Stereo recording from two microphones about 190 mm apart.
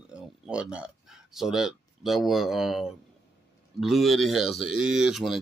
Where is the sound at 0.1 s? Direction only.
5° right (ahead or behind).